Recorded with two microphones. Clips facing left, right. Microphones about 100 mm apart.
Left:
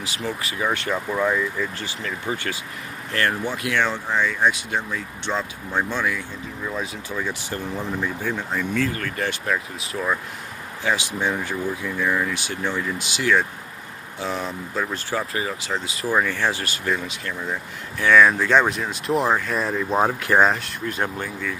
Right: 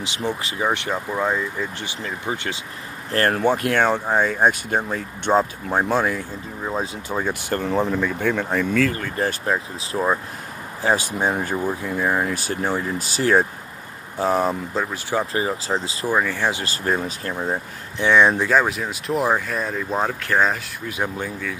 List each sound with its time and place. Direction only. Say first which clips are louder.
0.0 s speech: right 3 dB; 25° right (ahead or behind)
3.1 s speech: right 5 dB; 40° right (ahead or behind)
7.2 s speech: right 5 dB; 55° right (ahead or behind)
7.6 s speech: right 6 dB; 90° right; by 8.9 s 75° right (ahead or behind)
8.9 s speech: right 2 dB; 30° right (ahead or behind)
10.8 s speech: right 3 dB; 40° right (ahead or behind)
15.3 s speech: right 4 dB; 30° right (ahead or behind)
16.1 s speech: even; 10° right (ahead or behind)
16.6 s speech: right 3 dB; 40° right (ahead or behind)
18.0 s speech: even; 20° right (ahead or behind)
18.5 s speech: even; 5° right (ahead or behind)
20.0 s speech: left 3 dB; 15° left (ahead or behind)
20.6 s speech: left 1 dB; 5° right (ahead or behind)